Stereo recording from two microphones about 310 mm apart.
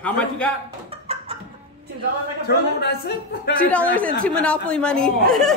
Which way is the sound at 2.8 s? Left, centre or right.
Left.